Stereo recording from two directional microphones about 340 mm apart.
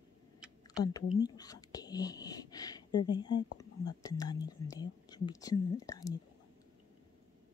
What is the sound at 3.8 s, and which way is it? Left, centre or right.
Speech, centre.